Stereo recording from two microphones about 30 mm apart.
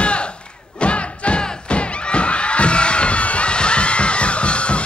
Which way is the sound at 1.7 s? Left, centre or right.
Left.